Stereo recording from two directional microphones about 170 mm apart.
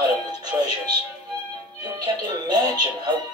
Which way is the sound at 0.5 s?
10° right (ahead or behind).